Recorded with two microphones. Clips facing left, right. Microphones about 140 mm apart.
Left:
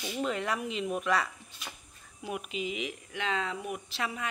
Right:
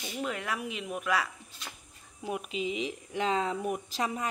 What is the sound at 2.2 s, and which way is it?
Speech, 30° right (ahead or behind).